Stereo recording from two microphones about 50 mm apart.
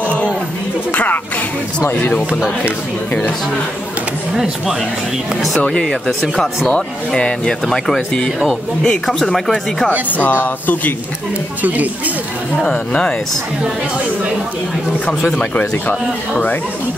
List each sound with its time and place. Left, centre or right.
0.9 s music: left
5.7 s speech: centre
7.2 s speech: centre
7.6 s speech: centre
10.0 s speech: left
11.6 s speech: right
12.6 s speech: centre
15.9 s speech: left